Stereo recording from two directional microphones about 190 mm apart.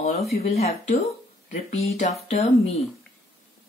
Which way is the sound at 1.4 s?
45° left (ahead or behind).